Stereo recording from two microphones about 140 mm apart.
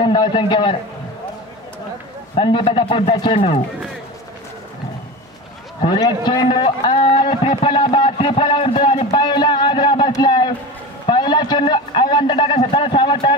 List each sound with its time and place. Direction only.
0.0 s a man's voice: 35° left (ahead or behind)
2.3 s a man's voice: 40° left (ahead or behind)
5.9 s a man's voice: 35° left (ahead or behind)